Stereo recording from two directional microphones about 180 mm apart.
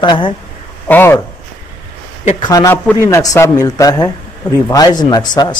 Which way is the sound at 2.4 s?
20° left (ahead or behind).